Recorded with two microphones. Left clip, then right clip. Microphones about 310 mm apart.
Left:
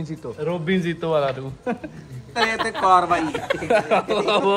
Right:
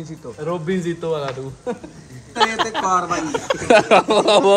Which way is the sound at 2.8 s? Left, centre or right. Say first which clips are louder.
Left 4 dB; left.